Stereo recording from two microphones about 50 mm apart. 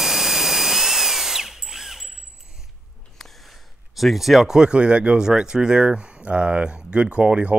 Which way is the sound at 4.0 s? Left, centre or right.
Centre.